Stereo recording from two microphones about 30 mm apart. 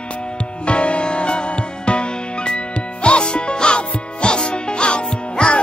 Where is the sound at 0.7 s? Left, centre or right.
Left.